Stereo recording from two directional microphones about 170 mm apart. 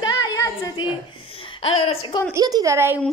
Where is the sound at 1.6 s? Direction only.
35° left (ahead or behind).